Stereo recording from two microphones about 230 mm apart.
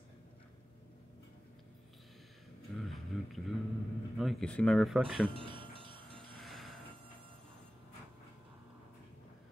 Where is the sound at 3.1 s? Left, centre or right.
Centre.